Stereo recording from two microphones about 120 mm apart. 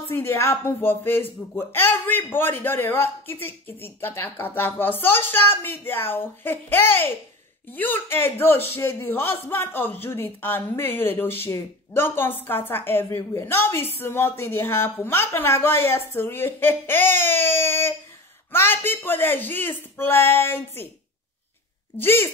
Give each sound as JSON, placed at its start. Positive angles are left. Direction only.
{"t": 0.1, "sound": "a man's voice", "side_deg": 20}
{"t": 21.9, "sound": "speech", "side_deg": 20}